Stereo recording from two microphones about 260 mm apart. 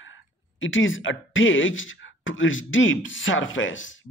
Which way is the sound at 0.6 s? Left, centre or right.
Left.